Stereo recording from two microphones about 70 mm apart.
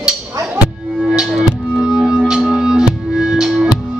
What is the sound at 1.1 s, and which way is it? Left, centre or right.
Music, centre.